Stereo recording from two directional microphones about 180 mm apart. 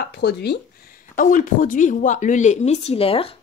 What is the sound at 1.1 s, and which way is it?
Speech, 45° left (ahead or behind).